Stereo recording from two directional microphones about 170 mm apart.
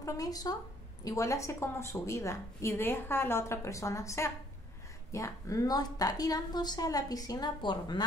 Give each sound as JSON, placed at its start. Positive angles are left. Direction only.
{"t": 0.0, "sound": "a woman's voice", "side_deg": 20}